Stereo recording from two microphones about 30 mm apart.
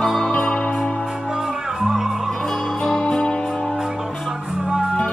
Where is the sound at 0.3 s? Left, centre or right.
Left.